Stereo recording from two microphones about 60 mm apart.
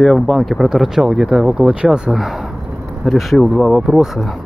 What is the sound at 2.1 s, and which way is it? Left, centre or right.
Speech, centre.